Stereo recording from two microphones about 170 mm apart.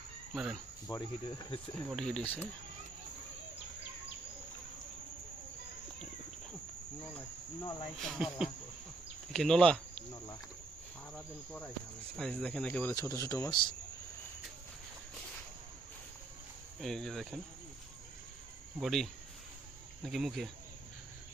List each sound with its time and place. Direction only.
0.3 s cricket: centre (ahead or behind)
0.8 s speech: 15° left (ahead or behind)
1.9 s speech: 5° left (ahead or behind)
8.0 s speech: 5° right (ahead or behind)
11.1 s speech: 5° left (ahead or behind)
16.8 s speech: centre (ahead or behind)
18.8 s speech: centre (ahead or behind)